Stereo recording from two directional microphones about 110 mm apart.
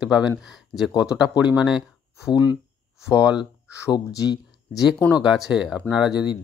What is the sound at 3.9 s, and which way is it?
Speech, 35° left (ahead or behind).